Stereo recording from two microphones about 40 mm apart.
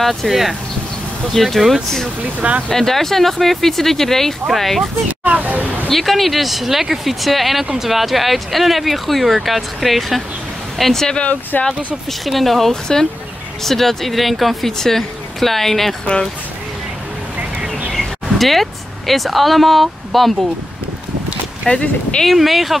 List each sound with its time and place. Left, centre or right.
0.0 s speech: centre
2.7 s speech: centre
5.2 s a sound: right
5.9 s speech: centre
11.5 s speech: left
12.1 s speech: centre
17.4 s a sound: right
17.9 s speech: centre
21.6 s speech: left
22.2 s speech: centre